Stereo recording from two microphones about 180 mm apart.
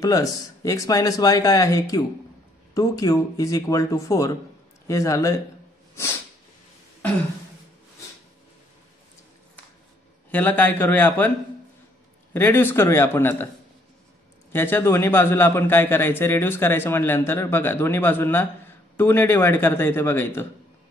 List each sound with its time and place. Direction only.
0.0 s speech: 20° left (ahead or behind)
10.3 s a man's voice: 10° left (ahead or behind)
12.4 s a man's voice: 10° left (ahead or behind)
14.5 s a man's voice: 15° left (ahead or behind)